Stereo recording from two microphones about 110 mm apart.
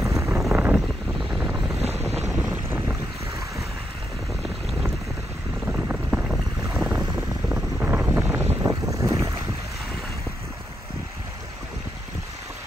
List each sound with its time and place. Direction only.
0.0 s a sound: 25° right (ahead or behind)
1.3 s vehicle: 5° right (ahead or behind)
2.3 s boat: 15° right (ahead or behind)
5.7 s boat: 15° right (ahead or behind)
7.4 s wind noise: 15° right (ahead or behind)
8.9 s boat: 30° right (ahead or behind)